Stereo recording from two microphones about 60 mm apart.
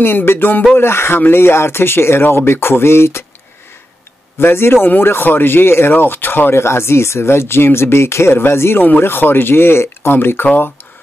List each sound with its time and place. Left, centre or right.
0.0 s speech: left
4.4 s speech: left